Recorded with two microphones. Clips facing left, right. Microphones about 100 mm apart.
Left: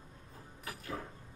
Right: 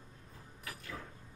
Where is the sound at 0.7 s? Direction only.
35° left (ahead or behind).